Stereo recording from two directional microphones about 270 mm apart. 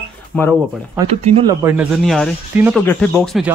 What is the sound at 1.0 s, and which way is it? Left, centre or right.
Speech, centre.